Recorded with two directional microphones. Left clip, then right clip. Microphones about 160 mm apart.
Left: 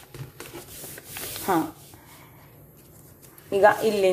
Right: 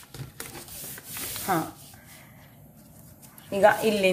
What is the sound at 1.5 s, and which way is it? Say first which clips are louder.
Speech: left 3 dB; 25° left (ahead or behind).